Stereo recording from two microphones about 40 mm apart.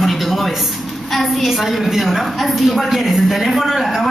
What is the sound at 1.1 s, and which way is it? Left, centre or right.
A woman's voice, centre.